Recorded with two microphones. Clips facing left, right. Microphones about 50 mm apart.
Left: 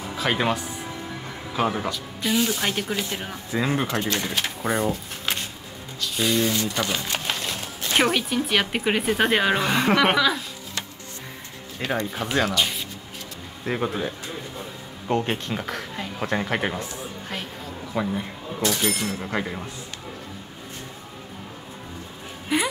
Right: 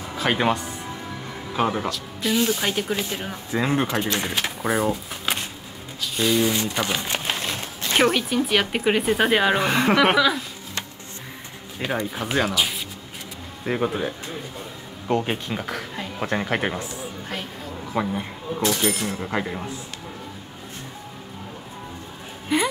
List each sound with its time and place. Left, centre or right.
0.2 s speech: centre
4.0 s speech: right
4.6 s speech: centre
5.9 s a sound: centre
6.5 s speech: right
8.1 s speech: centre
11.8 s speech: centre
15.2 s speech: centre
22.5 s music: centre